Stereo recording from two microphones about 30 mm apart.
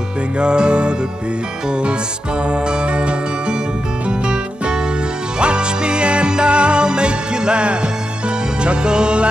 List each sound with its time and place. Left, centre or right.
0.4 s music: right
2.5 s music: right
5.4 s music: right